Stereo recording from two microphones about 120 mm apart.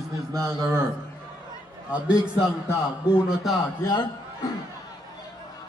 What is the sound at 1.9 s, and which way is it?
A man's voice, 10° right (ahead or behind).